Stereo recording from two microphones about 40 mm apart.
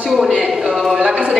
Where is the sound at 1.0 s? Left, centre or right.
Right.